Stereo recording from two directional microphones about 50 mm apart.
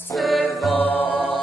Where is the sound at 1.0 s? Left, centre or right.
Right.